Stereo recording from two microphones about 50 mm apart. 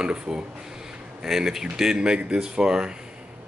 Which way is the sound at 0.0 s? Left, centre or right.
Centre.